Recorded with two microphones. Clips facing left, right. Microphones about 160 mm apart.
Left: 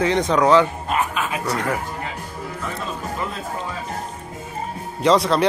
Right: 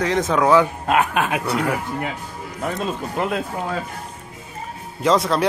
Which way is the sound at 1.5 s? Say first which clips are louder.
Right 1 dB; 10° right (ahead or behind).